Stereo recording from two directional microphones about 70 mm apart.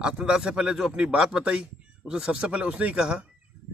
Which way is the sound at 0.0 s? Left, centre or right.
Centre.